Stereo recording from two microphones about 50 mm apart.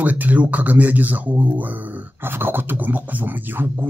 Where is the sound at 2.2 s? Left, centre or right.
Right.